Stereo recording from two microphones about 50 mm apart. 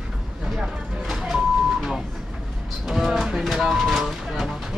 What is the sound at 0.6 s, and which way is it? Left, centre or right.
Vehicle, centre.